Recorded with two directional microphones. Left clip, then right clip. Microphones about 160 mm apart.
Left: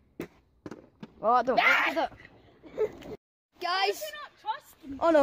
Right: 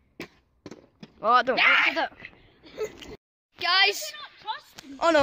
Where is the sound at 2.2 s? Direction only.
45° left (ahead or behind).